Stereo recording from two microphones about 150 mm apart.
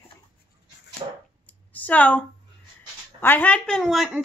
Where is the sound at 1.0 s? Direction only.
40° right (ahead or behind).